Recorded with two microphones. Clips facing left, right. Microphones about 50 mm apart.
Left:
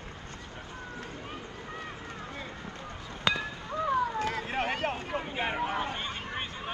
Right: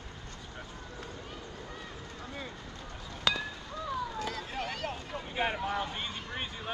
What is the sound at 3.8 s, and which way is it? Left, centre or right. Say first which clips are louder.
Vehicle: left 7 dB; left.